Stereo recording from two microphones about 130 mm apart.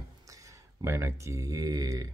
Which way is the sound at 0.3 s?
25° right (ahead or behind).